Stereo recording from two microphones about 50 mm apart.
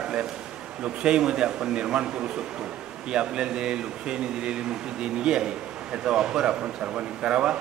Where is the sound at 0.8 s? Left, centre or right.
Centre.